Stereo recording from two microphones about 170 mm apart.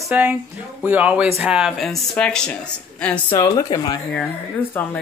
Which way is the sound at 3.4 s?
20° left (ahead or behind).